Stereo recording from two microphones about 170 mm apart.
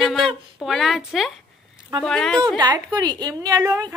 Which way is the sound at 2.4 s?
25° right (ahead or behind).